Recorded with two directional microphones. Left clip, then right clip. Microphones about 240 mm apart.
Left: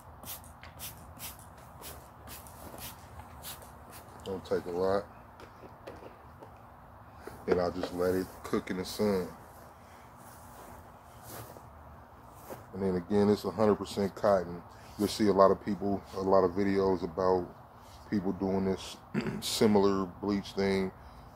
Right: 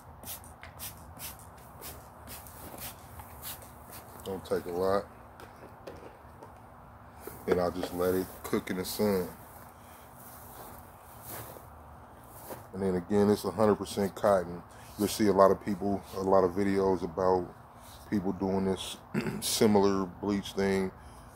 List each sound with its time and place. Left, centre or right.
4.2 s speech: centre
7.4 s speech: centre
12.4 s speech: centre